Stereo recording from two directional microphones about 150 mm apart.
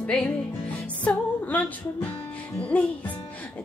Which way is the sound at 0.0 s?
5° left (ahead or behind).